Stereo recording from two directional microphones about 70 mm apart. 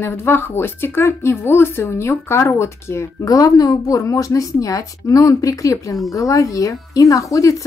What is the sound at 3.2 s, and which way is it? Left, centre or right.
A woman's voice, left.